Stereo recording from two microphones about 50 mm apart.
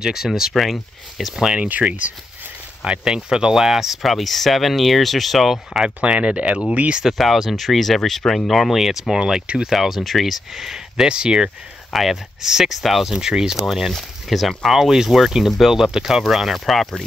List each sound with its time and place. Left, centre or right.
0.0 s speech: centre
1.4 s speech: right
2.8 s speech: centre
5.9 s speech: right
7.2 s speech: centre
11.9 s speech: centre